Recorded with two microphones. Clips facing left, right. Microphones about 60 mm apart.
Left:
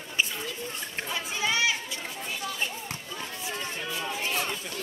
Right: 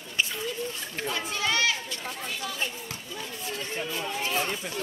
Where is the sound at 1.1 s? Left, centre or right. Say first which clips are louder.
Right 1 dB; centre.